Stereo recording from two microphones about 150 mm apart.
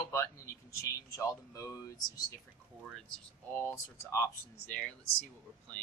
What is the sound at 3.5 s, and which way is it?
Speech, 15° left (ahead or behind).